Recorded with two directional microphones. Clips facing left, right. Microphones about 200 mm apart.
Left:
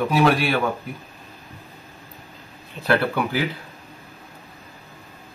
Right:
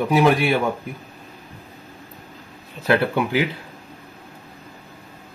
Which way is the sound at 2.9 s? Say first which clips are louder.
Right 2 dB; 20° right (ahead or behind).